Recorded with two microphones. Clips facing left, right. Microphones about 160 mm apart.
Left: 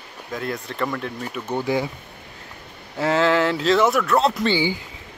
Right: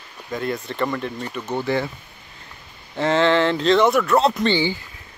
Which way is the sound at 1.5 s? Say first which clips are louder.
Even; 10° left (ahead or behind).